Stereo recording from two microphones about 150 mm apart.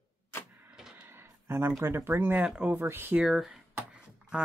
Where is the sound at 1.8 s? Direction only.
15° right (ahead or behind).